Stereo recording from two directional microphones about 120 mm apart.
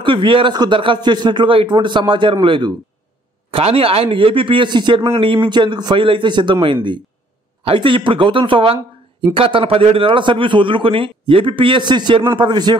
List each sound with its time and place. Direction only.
0.0 s a man's voice: 45° right (ahead or behind)